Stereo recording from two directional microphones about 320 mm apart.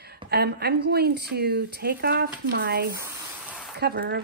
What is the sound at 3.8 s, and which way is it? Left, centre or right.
Speech, right.